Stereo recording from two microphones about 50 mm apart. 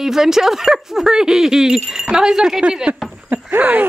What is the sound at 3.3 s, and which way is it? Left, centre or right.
Speech, right.